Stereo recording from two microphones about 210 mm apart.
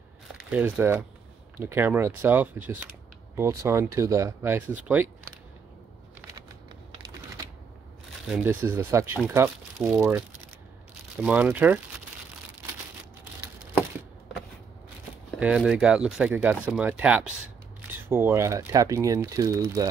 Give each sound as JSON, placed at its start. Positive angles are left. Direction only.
{"t": 0.4, "sound": "speech", "side_deg": -5}
{"t": 8.3, "sound": "speech", "side_deg": -10}
{"t": 11.2, "sound": "speech", "side_deg": -5}
{"t": 15.3, "sound": "speech", "side_deg": -5}